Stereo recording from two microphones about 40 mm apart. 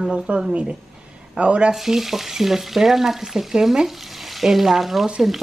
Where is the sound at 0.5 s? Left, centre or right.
Right.